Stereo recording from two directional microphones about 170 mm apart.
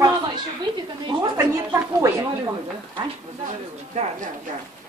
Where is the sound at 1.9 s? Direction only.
15° right (ahead or behind).